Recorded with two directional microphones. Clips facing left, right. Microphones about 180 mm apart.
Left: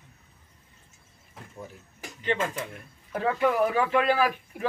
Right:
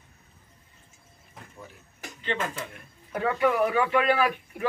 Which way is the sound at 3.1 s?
Centre (ahead or behind).